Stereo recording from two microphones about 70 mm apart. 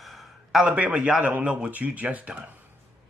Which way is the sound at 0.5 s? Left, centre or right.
Centre.